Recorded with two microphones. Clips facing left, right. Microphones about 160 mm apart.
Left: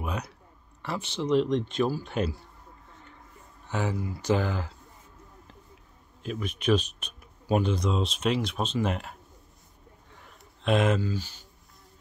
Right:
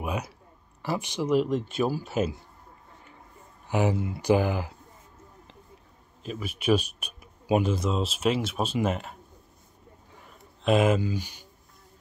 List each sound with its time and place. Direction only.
0.0 s a sound: 10° right (ahead or behind)
0.8 s speech: 10° right (ahead or behind)
3.6 s speech: 15° right (ahead or behind)
4.2 s speech: 10° right (ahead or behind)
6.2 s speech: 5° right (ahead or behind)
10.2 s a sound: 5° right (ahead or behind)